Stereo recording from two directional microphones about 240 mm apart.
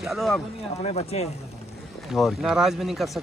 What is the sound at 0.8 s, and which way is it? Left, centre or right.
Speech, left.